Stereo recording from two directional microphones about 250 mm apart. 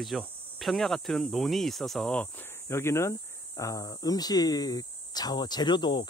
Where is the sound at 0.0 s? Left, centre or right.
Centre.